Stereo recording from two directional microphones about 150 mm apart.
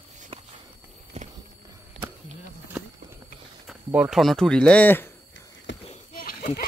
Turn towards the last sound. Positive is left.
turn(degrees=70)  # may be behind; listen again after turning